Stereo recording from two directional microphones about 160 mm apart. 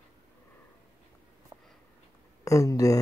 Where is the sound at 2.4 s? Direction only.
20° left (ahead or behind).